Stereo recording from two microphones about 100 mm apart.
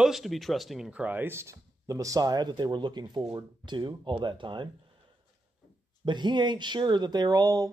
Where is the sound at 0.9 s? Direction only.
15° right (ahead or behind); by 4.7 s 55° right (ahead or behind).